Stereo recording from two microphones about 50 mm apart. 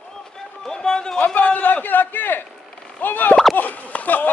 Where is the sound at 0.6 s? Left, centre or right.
Centre.